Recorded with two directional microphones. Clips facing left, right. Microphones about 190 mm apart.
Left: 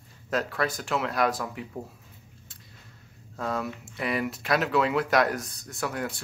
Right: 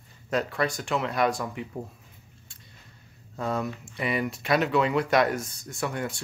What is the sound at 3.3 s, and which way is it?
Speech, centre (ahead or behind).